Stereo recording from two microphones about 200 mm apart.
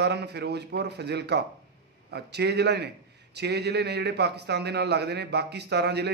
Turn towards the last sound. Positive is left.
turn(degrees=-55)  # may be behind; listen again after turning